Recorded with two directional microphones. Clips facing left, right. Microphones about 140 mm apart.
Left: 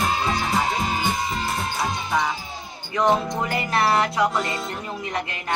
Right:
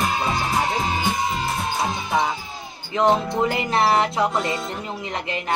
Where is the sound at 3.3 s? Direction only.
25° right (ahead or behind).